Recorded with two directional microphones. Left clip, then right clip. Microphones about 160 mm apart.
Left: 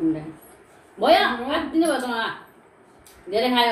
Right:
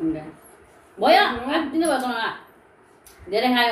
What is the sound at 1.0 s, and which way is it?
A woman's voice, 15° right (ahead or behind).